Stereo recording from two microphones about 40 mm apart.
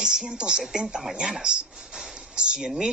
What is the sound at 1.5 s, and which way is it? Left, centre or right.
Speech, right.